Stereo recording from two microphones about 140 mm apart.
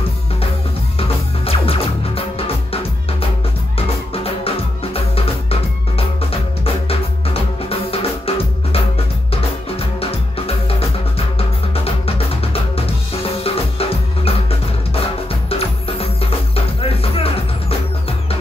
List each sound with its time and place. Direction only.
0.9 s music: 45° left (ahead or behind)
15.5 s music: 45° left (ahead or behind)